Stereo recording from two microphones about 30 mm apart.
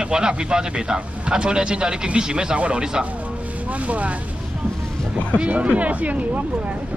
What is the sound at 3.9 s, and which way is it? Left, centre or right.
Speech, right.